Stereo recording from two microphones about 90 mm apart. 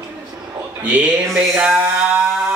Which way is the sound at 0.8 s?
15° right (ahead or behind).